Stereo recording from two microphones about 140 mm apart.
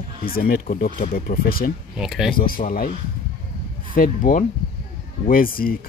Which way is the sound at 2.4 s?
85° left.